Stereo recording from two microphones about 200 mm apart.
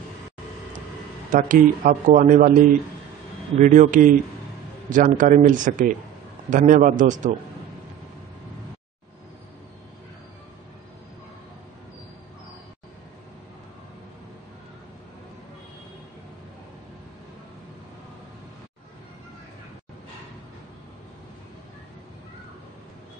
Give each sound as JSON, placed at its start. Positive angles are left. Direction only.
{"t": 1.3, "sound": "speech", "side_deg": -40}
{"t": 3.5, "sound": "speech", "side_deg": -40}